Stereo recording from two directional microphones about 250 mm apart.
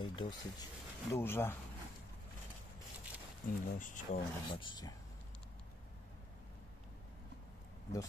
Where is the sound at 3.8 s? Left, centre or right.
Left.